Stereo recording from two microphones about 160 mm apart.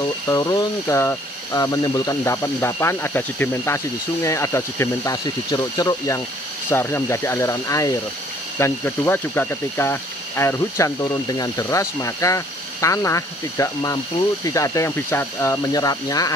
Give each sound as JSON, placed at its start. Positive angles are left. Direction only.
{"t": 0.3, "sound": "speech", "side_deg": 25}